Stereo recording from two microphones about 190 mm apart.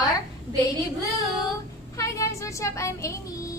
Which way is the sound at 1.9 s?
15° left (ahead or behind).